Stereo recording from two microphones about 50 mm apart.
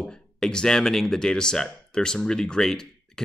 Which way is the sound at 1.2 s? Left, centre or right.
Centre.